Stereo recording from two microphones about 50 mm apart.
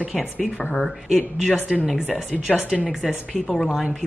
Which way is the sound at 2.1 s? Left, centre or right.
Centre.